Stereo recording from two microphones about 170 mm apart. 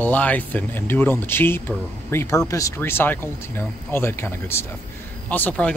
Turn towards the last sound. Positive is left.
turn(degrees=10)  # may be behind; listen again after turning